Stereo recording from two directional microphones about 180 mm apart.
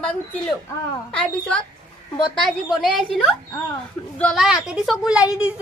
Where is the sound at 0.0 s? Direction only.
5° left (ahead or behind).